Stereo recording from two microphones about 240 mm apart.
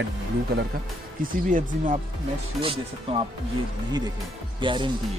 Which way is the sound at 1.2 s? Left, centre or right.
Right.